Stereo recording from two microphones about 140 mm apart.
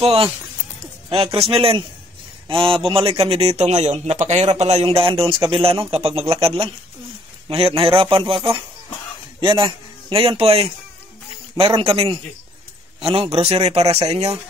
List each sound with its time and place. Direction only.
0.0 s a man's voice: 40° right (ahead or behind)